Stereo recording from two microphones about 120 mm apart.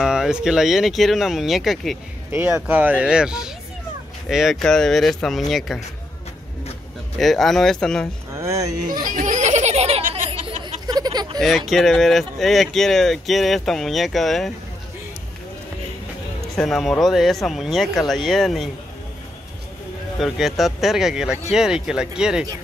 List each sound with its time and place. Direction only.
0.0 s speech: 5° right (ahead or behind)
2.3 s speech: 15° right (ahead or behind); by 5.8 s centre (ahead or behind)
7.2 s speech: centre (ahead or behind)
8.4 s speech: 25° right (ahead or behind)
9.0 s a sound: 90° right; by 10.5 s 55° right (ahead or behind)
10.6 s a sound: 35° right (ahead or behind)
11.4 s speech: centre (ahead or behind)
16.5 s speech: centre (ahead or behind)
20.2 s speech: centre (ahead or behind)